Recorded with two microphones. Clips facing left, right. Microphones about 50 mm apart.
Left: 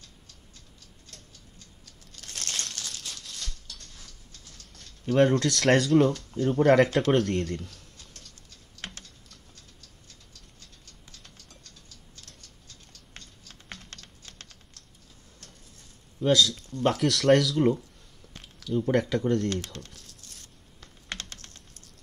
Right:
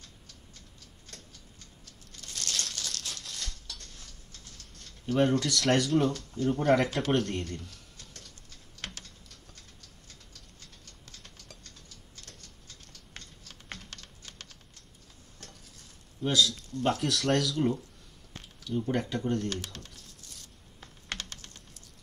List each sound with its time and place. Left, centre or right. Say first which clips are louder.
2.6 s crumpling: even; centre
5.0 s speech: left 4 dB; left
6.6 s speech: left 7 dB; left
16.3 s speech: left 4 dB; left